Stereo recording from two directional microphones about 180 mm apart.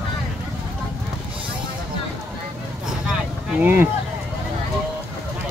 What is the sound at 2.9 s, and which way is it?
Vehicle, 5° right (ahead or behind).